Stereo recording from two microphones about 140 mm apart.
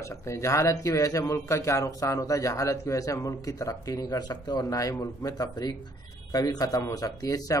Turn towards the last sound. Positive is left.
turn(degrees=25)  # may be behind; listen again after turning